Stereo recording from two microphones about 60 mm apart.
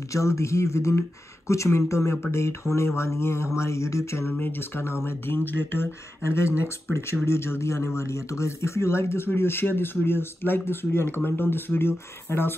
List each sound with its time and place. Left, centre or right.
0.1 s speech: left
4.3 s speech: left